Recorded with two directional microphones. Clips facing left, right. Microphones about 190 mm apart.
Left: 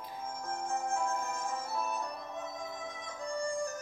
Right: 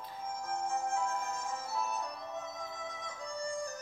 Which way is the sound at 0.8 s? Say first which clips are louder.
Left 3 dB; 50° left (ahead or behind).